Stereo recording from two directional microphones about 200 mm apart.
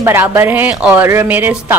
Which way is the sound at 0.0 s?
10° right (ahead or behind).